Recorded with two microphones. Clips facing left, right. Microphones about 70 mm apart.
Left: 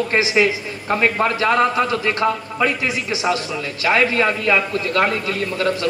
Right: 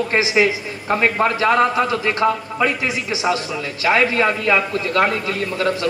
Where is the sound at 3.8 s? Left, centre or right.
Right.